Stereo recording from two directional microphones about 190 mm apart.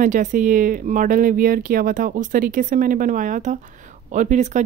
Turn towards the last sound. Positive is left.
turn(degrees=-40)  # may be behind; listen again after turning